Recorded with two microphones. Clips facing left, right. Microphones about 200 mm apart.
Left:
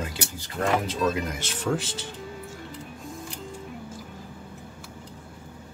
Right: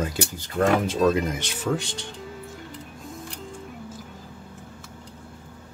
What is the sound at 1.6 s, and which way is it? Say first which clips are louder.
Speech: even; centre (ahead or behind).